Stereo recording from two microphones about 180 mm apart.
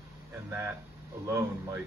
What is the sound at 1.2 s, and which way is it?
Speech, 15° right (ahead or behind).